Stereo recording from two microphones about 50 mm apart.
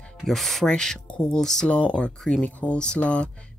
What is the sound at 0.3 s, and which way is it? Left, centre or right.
Speech, centre.